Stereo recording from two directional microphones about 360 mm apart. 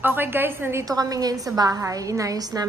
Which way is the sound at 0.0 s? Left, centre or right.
Centre.